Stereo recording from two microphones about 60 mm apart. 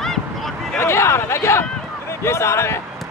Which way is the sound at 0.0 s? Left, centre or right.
Centre.